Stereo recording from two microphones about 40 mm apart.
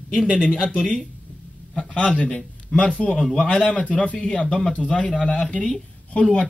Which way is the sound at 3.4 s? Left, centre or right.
Left.